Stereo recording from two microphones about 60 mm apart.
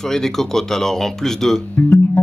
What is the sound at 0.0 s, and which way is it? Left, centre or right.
Speech, centre.